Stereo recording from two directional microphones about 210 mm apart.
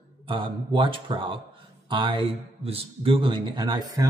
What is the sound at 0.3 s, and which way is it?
A man's voice, 25° right (ahead or behind).